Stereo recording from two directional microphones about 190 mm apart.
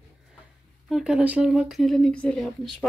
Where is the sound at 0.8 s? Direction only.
Centre (ahead or behind).